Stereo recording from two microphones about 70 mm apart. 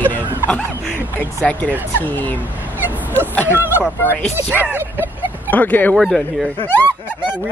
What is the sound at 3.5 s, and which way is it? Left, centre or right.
Speech, right.